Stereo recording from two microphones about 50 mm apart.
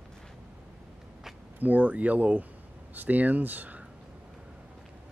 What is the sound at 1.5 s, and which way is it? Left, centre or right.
Speech, right.